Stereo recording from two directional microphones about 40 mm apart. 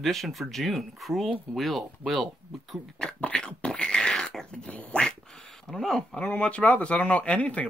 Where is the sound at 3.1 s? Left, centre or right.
Left.